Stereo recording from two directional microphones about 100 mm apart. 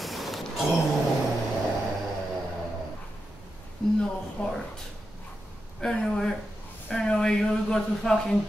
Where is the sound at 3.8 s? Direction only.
5° left (ahead or behind).